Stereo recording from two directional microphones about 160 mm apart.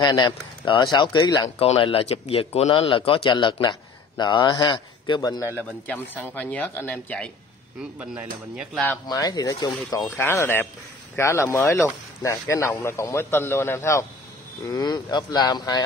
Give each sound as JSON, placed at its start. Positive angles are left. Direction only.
{"t": 0.0, "sound": "speech", "side_deg": 25}
{"t": 1.6, "sound": "speech", "side_deg": 35}
{"t": 5.9, "sound": "speech", "side_deg": 10}
{"t": 8.0, "sound": "dishes", "side_deg": -10}
{"t": 9.0, "sound": "speech", "side_deg": 25}